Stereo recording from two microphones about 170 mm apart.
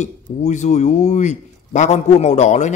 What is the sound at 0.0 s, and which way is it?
A man's voice, 45° left (ahead or behind).